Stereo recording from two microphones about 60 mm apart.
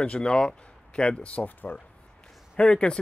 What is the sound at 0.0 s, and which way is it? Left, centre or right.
Speech, centre.